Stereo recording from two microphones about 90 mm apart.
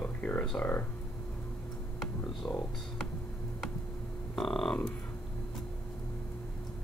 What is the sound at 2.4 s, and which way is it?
Speech, 30° left (ahead or behind).